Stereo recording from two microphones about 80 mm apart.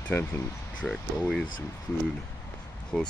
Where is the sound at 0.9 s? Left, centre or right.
Centre.